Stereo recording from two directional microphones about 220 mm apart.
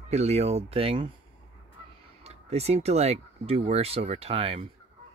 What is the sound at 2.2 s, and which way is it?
Speech, 30° right (ahead or behind).